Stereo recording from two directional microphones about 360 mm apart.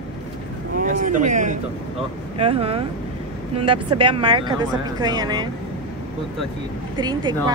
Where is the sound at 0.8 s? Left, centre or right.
Right.